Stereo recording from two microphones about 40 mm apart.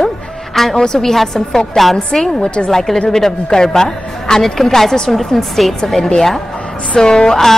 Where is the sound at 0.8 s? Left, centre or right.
Centre.